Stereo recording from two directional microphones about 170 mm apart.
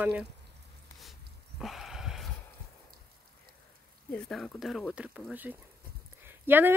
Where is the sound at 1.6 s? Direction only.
Centre (ahead or behind).